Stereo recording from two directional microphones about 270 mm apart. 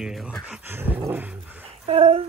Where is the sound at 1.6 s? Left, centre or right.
Right.